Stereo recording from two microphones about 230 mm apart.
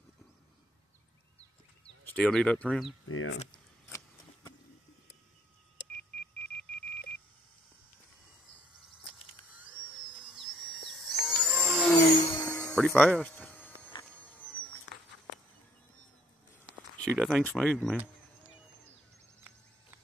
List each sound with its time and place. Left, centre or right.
2.0 s speech: centre
3.1 s speech: left
3.8 s a sound: centre
5.8 s beep: left
9.0 s a sound: centre
10.2 s dental drill: centre
12.3 s a sound: centre
14.0 s vehicle: centre
17.2 s speech: centre